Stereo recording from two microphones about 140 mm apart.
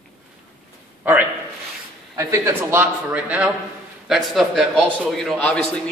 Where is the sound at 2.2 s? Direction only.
20° right (ahead or behind); by 5.4 s 5° left (ahead or behind).